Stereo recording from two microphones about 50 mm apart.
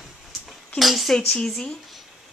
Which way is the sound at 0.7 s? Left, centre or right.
Centre.